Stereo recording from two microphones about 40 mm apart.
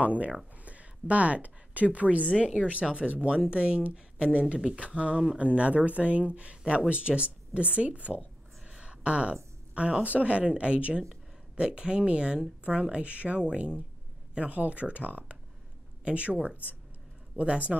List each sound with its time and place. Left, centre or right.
0.0 s speech: right
5.4 s speech: right
8.6 s a sound: right
10.0 s speech: right
17.4 s speech: right